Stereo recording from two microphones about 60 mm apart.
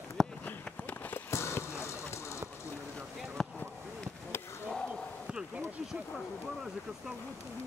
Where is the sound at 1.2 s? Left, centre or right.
Left.